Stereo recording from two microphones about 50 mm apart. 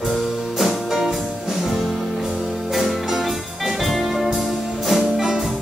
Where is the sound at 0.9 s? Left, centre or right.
Centre.